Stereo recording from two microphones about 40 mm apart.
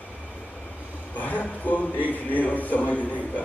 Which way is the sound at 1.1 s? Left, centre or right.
Left.